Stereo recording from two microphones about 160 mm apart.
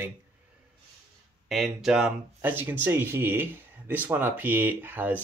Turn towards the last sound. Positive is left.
turn(degrees=-10)  # may be behind; listen again after turning